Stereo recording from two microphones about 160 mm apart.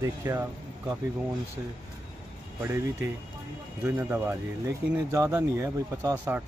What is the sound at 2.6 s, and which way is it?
Speech, 15° right (ahead or behind).